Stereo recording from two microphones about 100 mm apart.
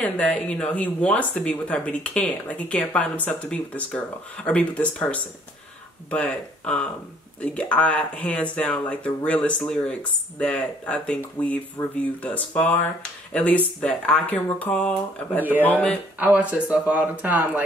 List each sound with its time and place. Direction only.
0.0 s speech: 15° left (ahead or behind)
16.2 s speech: 15° right (ahead or behind)